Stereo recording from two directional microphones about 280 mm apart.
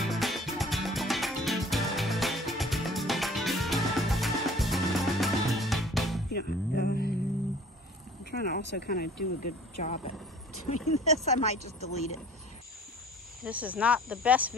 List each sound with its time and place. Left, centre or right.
0.0 s music: centre
6.3 s music: left
8.3 s a sound: left
9.8 s speech: left
13.4 s speech: centre